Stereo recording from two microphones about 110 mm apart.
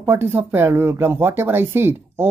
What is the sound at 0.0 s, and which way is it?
Speech, 20° right (ahead or behind).